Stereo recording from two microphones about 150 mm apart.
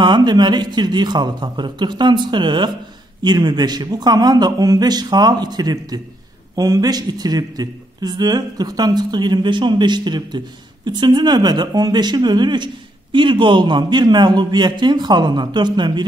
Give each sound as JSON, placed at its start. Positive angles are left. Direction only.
{"t": 0.0, "sound": "a man's voice", "side_deg": -30}